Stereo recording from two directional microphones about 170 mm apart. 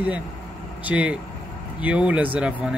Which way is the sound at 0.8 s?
10° right (ahead or behind).